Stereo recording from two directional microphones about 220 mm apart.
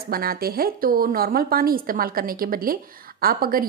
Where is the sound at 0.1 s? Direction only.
45° right (ahead or behind).